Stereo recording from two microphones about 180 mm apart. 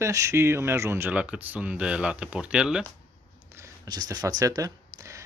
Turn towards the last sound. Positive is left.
turn(degrees=-20)  # may be behind; listen again after turning